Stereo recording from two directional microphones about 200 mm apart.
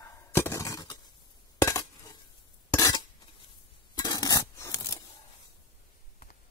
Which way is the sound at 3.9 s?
20° left (ahead or behind).